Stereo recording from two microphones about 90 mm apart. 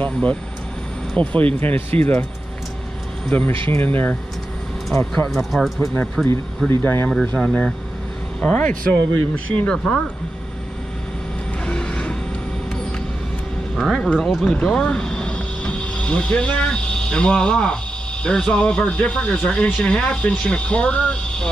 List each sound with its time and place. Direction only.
0.0 s speech: 15° left (ahead or behind)
3.3 s speech: 20° left (ahead or behind)
5.1 s speech: 5° left (ahead or behind)
6.7 s speech: 25° left (ahead or behind)
7.3 s speech: 5° left (ahead or behind)
11.6 s vehicle: 10° left (ahead or behind)
13.7 s speech: 5° left (ahead or behind)